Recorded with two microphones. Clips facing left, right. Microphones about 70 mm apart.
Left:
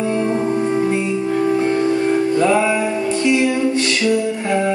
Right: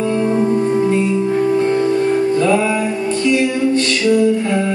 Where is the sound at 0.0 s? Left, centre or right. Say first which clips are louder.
Right 2 dB; centre.